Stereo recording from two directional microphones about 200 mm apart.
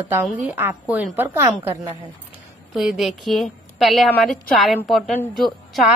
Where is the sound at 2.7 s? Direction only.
Centre (ahead or behind).